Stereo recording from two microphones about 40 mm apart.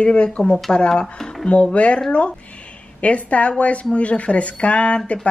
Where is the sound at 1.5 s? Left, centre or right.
Left.